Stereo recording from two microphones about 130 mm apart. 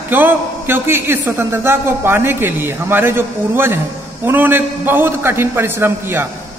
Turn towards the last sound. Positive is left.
turn(degrees=-20)  # may be behind; listen again after turning